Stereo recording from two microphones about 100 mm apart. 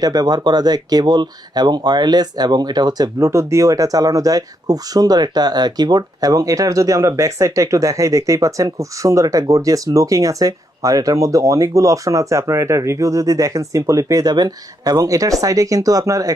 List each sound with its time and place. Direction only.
0.0 s speech: 40° right (ahead or behind)